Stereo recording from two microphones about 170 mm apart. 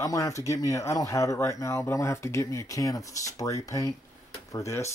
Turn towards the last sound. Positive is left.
turn(degrees=15)  # may be behind; listen again after turning